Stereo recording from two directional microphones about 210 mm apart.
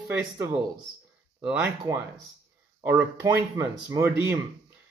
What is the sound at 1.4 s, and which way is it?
Speech, 15° right (ahead or behind).